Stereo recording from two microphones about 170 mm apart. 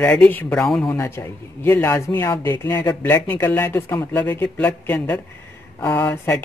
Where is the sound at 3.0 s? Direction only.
10° left (ahead or behind).